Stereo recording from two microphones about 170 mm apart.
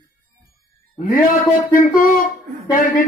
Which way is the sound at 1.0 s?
55° left (ahead or behind).